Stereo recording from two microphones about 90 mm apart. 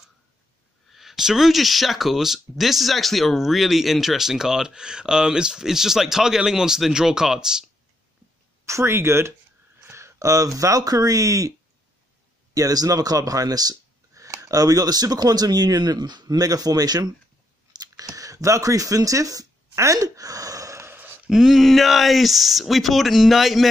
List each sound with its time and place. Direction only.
0.9 s speech: 5° right (ahead or behind)
8.6 s speech: 30° right (ahead or behind)
12.5 s speech: 40° right (ahead or behind)
17.7 s a sound: 40° right (ahead or behind); by 21.2 s 25° right (ahead or behind)
21.3 s speech: 5° right (ahead or behind)